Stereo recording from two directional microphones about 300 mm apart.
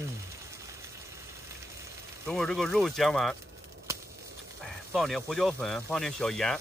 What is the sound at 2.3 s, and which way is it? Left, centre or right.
Speech, centre.